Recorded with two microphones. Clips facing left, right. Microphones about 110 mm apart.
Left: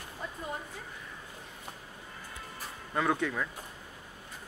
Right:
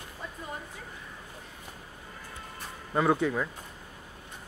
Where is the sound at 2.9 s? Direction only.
15° right (ahead or behind).